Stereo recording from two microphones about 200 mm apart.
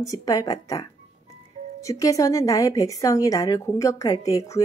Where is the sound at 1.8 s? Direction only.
15° left (ahead or behind).